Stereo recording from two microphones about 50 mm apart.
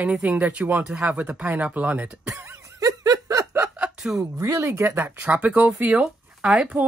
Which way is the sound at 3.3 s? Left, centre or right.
Right.